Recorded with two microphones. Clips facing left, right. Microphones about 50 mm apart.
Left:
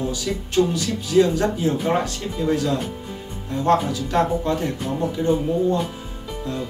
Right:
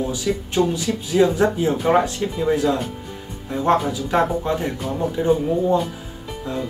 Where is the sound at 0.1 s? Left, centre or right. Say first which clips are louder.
Right 1 dB; centre.